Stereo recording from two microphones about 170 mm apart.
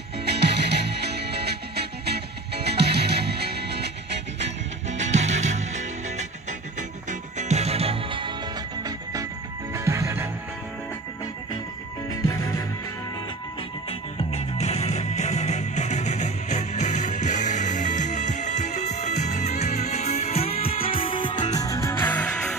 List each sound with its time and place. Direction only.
0.2 s music: 80° right
4.9 s music: 45° right (ahead or behind)
8.8 s music: 20° right (ahead or behind)
12.1 s music: 20° left (ahead or behind)
14.1 s music: 40° left (ahead or behind)
21.5 s music: 20° left (ahead or behind)